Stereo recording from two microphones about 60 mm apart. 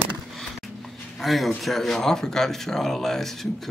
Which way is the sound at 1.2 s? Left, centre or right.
Centre.